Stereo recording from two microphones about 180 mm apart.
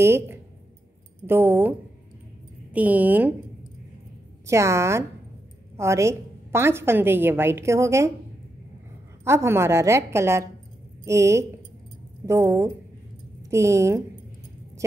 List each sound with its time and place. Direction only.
0.0 s a woman's voice: 15° right (ahead or behind)
4.5 s a woman's voice: 15° right (ahead or behind)
9.2 s a woman's voice: 15° right (ahead or behind)